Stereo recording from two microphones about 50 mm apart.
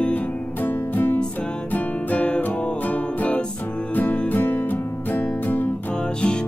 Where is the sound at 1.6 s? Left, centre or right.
Left.